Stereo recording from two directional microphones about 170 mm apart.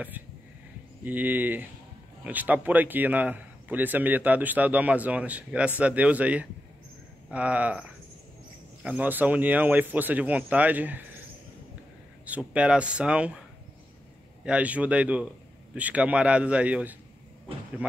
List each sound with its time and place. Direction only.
1.0 s a man's voice: 10° right (ahead or behind)
8.8 s a man's voice: 10° right (ahead or behind)
12.3 s a man's voice: 5° right (ahead or behind)
14.4 s a man's voice: 5° right (ahead or behind)